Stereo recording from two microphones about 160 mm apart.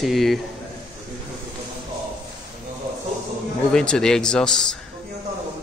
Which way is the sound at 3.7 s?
5° left (ahead or behind).